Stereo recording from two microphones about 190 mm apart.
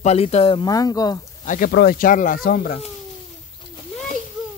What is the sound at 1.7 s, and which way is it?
Speech, 55° left (ahead or behind).